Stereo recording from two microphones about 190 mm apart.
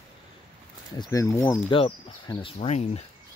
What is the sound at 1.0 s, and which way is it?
Speech, 15° left (ahead or behind).